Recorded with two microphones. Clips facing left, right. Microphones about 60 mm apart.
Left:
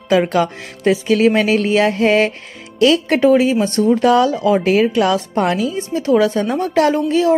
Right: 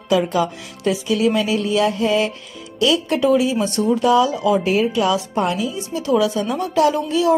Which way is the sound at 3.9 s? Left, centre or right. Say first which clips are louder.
Left 2 dB; left.